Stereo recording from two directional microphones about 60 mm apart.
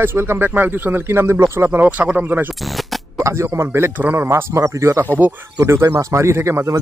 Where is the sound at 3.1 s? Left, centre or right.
Right.